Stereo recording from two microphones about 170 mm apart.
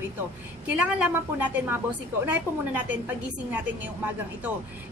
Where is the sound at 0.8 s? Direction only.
10° right (ahead or behind).